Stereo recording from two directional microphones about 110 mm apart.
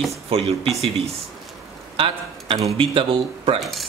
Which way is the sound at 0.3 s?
65° right (ahead or behind).